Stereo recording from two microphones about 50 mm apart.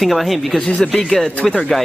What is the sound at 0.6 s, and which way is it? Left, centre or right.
Speech, left.